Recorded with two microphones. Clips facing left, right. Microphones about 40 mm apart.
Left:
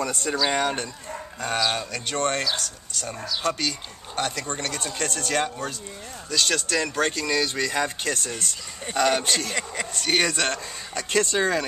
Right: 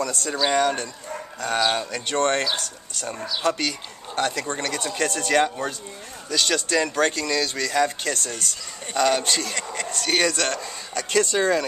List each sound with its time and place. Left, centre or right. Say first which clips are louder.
0.0 s speech: right 1 dB; left
0.5 s a man's voice: right 7 dB; centre
1.6 s speech: right 3 dB; centre
7.2 s a man's voice: even; centre